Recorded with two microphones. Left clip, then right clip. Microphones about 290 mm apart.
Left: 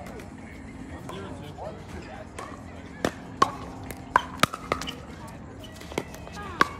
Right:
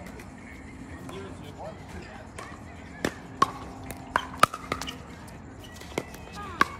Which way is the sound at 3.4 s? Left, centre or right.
Left.